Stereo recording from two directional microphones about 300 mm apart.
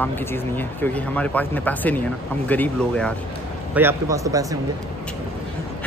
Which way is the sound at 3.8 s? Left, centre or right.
Centre.